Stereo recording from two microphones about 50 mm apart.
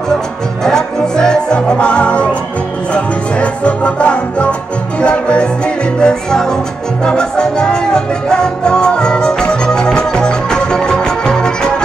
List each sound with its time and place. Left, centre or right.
0.7 s music: centre